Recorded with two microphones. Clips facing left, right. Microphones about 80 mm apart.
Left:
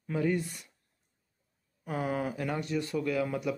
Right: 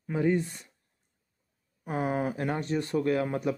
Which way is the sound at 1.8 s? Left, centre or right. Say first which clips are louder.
Right 3 dB; right.